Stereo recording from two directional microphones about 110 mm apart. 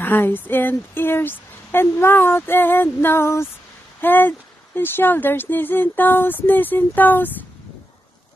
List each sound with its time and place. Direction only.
0.0 s speech: 20° left (ahead or behind)